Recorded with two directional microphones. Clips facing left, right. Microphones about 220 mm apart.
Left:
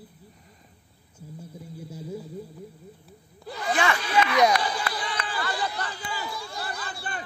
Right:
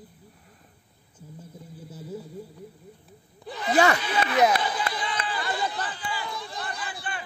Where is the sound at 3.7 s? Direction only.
40° right (ahead or behind).